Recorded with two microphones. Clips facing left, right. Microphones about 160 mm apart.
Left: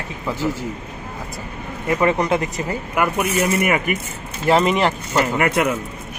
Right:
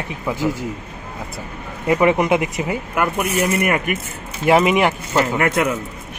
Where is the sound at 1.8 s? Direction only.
15° right (ahead or behind).